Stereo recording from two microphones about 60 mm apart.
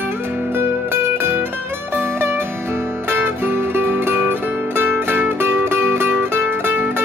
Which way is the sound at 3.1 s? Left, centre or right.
Right.